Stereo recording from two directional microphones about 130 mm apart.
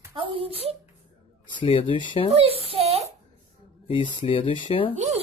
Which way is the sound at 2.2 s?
50° right (ahead or behind).